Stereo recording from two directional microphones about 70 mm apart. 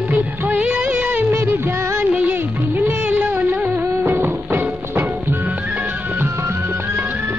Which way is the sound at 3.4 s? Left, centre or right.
Right.